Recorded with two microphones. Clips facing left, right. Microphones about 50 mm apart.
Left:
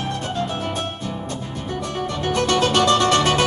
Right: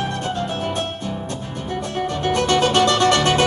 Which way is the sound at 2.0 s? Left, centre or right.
Right.